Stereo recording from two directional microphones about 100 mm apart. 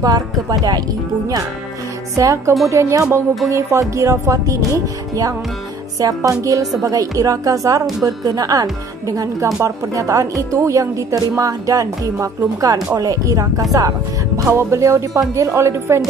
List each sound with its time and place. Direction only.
0.0 s speech: 40° right (ahead or behind)
2.1 s speech: 30° right (ahead or behind)